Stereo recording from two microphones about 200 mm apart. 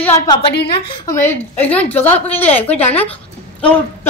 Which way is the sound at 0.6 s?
20° left (ahead or behind).